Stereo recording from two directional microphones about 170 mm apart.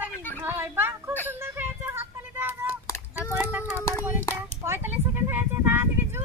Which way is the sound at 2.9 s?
15° left (ahead or behind).